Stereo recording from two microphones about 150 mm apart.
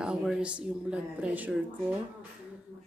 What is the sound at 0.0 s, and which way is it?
Speech, 5° right (ahead or behind).